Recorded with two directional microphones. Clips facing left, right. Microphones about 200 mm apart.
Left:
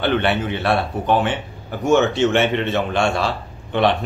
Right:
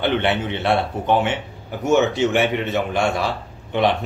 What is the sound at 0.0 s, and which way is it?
Speech, 20° right (ahead or behind).